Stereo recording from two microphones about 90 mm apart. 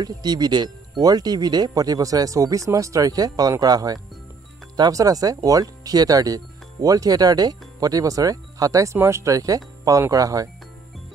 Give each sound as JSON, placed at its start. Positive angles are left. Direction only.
{"t": 0.0, "sound": "speech", "side_deg": -50}
{"t": 8.9, "sound": "speech", "side_deg": -30}